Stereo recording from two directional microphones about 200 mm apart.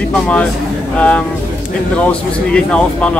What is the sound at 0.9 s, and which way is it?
A man's voice, 5° left (ahead or behind).